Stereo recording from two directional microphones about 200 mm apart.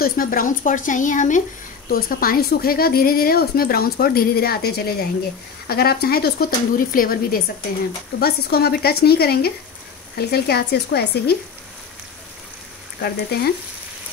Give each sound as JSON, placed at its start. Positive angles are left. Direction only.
{"t": 0.0, "sound": "a woman's voice", "side_deg": 45}
{"t": 13.0, "sound": "a woman's voice", "side_deg": 50}